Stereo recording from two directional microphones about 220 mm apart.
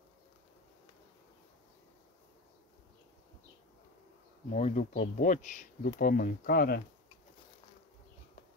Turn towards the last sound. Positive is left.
turn(degrees=45)  # may be behind; listen again after turning